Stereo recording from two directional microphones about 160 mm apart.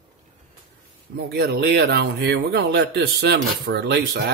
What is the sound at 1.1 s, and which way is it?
Speech, 85° right.